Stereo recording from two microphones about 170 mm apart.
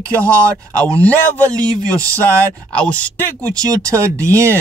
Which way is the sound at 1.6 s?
20° right (ahead or behind).